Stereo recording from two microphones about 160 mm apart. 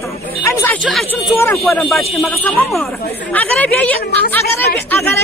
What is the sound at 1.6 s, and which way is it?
Speech, centre (ahead or behind).